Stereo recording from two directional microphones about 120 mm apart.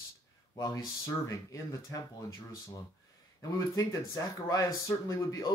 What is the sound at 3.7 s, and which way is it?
Speech, 30° left (ahead or behind).